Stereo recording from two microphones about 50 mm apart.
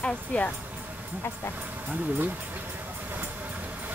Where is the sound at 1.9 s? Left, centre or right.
Right.